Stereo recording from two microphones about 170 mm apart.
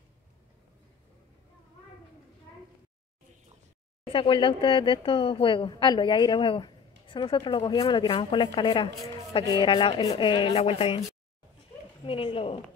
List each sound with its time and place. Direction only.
4.0 s a woman's voice: 30° left (ahead or behind)
12.0 s speech: 30° left (ahead or behind)